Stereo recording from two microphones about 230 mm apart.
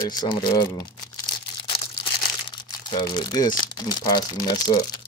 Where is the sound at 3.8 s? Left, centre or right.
Centre.